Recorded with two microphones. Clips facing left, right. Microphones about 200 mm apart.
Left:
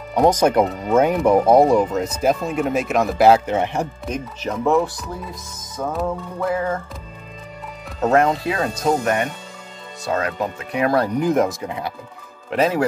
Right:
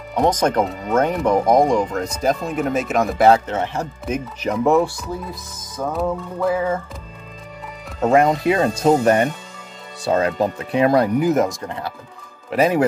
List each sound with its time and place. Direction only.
0.1 s speech: 10° left (ahead or behind)
4.0 s speech: 10° right (ahead or behind)
5.3 s music: centre (ahead or behind)
8.0 s speech: 10° right (ahead or behind)
8.5 s speech: 25° right (ahead or behind)
11.1 s music: 5° right (ahead or behind)
12.4 s speech: 15° right (ahead or behind)